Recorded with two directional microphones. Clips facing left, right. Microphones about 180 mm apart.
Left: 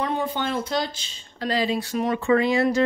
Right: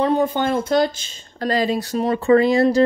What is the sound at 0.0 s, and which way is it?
Speech, 40° right (ahead or behind).